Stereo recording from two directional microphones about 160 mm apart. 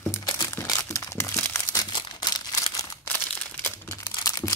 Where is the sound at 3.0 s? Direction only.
10° left (ahead or behind).